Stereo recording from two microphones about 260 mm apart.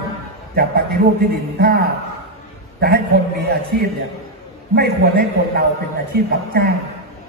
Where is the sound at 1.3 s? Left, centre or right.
Right.